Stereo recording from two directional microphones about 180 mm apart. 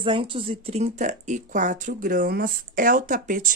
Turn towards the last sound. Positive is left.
turn(degrees=-50)  # may be behind; listen again after turning